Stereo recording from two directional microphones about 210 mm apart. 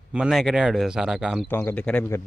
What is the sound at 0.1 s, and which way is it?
A man's voice, 5° right (ahead or behind).